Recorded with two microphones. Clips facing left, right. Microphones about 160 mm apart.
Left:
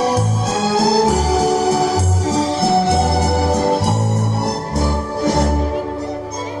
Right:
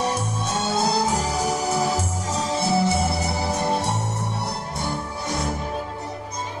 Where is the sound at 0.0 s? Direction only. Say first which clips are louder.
Left 7 dB; 90° left.